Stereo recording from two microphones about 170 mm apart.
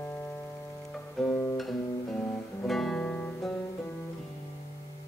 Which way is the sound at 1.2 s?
Centre (ahead or behind).